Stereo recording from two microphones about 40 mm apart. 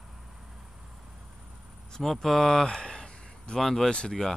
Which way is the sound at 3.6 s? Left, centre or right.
Centre.